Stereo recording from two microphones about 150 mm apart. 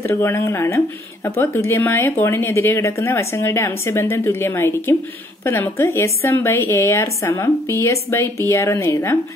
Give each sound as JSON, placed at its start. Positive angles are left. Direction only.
{"t": 0.0, "sound": "a woman's voice", "side_deg": 15}